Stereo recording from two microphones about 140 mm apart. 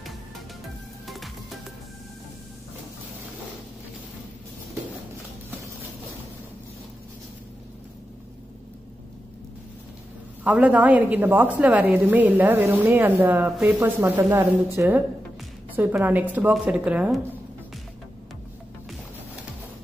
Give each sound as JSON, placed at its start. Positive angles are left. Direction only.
{"t": 1.0, "sound": "music", "side_deg": 0}
{"t": 10.4, "sound": "a woman's voice", "side_deg": -10}